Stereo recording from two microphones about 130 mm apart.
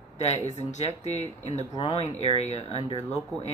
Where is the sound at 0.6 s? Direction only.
60° left (ahead or behind).